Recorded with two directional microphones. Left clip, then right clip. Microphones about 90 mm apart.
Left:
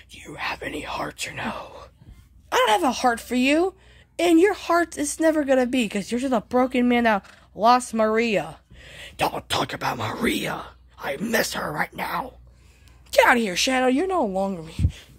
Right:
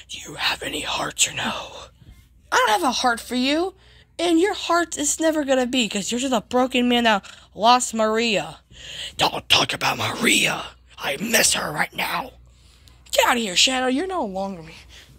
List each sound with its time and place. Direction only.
0.0 s speech: 25° left (ahead or behind)
2.5 s speech: 50° left (ahead or behind)
3.4 s speech: 90° left
4.2 s speech: 60° left (ahead or behind); by 8.5 s 40° left (ahead or behind)
8.7 s speech: 15° left (ahead or behind)
13.1 s a woman's voice: 75° left (ahead or behind)
13.8 s speech: 45° left (ahead or behind)
14.2 s speech: 90° left